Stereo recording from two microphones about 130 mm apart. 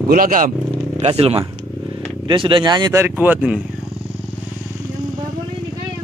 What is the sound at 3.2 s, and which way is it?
Speech, 10° right (ahead or behind).